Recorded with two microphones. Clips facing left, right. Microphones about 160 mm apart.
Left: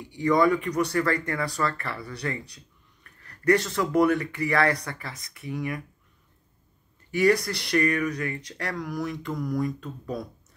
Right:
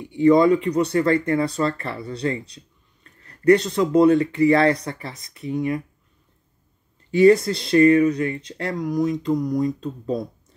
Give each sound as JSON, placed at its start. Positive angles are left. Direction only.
{"t": 0.0, "sound": "speech", "side_deg": -25}
{"t": 7.1, "sound": "speech", "side_deg": -25}